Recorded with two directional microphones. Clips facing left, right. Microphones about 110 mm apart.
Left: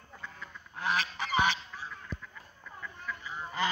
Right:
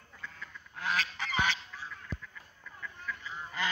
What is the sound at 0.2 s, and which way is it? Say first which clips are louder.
Goose: even; 20° left (ahead or behind).